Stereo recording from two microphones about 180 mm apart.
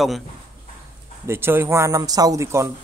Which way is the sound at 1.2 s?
15° right (ahead or behind).